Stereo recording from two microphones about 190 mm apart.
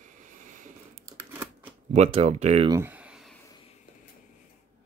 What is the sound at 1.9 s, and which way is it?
Speech, 35° right (ahead or behind).